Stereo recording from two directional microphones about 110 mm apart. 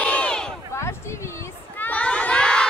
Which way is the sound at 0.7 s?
25° left (ahead or behind).